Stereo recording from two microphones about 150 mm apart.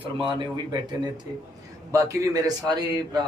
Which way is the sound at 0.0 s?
30° right (ahead or behind).